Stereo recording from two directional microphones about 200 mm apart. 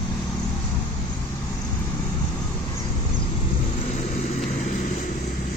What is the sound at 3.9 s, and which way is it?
Vehicle, 35° left (ahead or behind).